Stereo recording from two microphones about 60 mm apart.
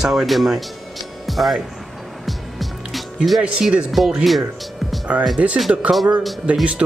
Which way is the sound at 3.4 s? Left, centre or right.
Centre.